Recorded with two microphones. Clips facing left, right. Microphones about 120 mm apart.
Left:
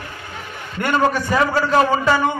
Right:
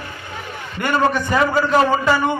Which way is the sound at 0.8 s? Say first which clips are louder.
Even; 5° left (ahead or behind).